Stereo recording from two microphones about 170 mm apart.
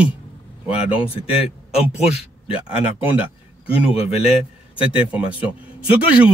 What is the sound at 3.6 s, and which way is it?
Speech, 35° left (ahead or behind).